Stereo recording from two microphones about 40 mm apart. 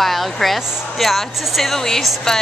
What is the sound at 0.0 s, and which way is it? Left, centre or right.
A woman's voice, centre.